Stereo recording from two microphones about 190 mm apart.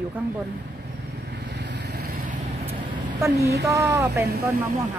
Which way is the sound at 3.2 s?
15° right (ahead or behind).